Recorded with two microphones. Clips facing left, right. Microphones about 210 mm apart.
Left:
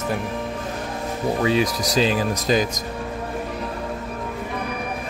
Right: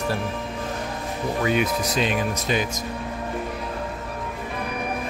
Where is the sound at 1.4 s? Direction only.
30° left (ahead or behind).